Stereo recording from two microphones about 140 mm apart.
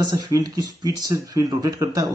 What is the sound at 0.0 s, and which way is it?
Speech, 30° right (ahead or behind).